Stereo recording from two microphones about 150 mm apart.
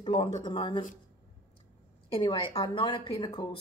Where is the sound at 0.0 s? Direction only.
35° left (ahead or behind).